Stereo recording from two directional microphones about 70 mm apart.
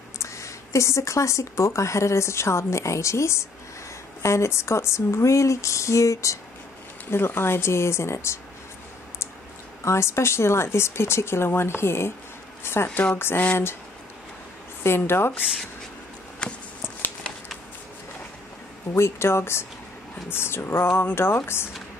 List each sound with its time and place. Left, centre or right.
0.2 s speech: left
7.1 s speech: left
9.8 s speech: left
14.8 s speech: left
16.4 s a sound: centre
18.9 s speech: left